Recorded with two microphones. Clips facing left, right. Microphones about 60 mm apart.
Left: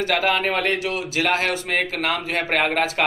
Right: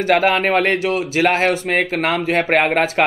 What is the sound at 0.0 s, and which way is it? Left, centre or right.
Speech, right.